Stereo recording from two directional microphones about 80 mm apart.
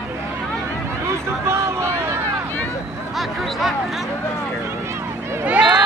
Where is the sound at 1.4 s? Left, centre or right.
Right.